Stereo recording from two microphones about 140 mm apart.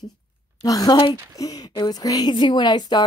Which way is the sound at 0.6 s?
25° left (ahead or behind).